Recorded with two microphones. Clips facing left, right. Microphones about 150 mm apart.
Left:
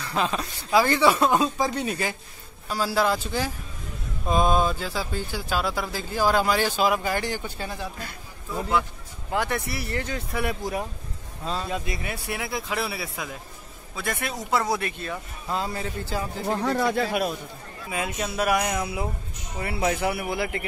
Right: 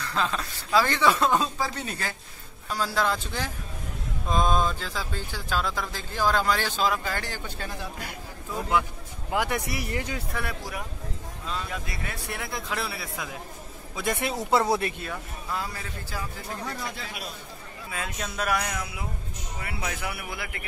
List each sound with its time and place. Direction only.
0.0 s speech: 15° left (ahead or behind)
9.3 s speech: 10° right (ahead or behind)
10.3 s a man's voice: 20° left (ahead or behind)
13.9 s speech: 20° right (ahead or behind)
15.5 s a man's voice: 25° left (ahead or behind)
16.4 s speech: 65° left (ahead or behind)
17.9 s speech: 10° left (ahead or behind); by 20.6 s 30° left (ahead or behind)